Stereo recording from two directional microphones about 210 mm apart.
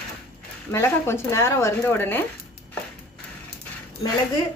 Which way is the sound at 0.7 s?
10° left (ahead or behind).